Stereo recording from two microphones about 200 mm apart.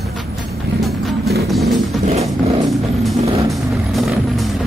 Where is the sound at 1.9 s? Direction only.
Centre (ahead or behind).